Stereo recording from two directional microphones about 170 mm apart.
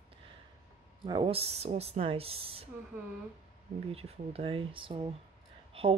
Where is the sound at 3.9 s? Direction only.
35° right (ahead or behind).